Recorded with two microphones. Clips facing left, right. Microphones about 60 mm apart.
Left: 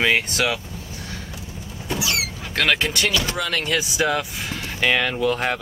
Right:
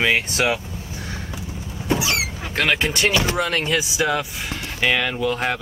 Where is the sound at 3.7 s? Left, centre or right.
Centre.